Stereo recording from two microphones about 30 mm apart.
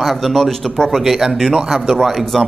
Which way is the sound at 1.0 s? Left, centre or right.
Centre.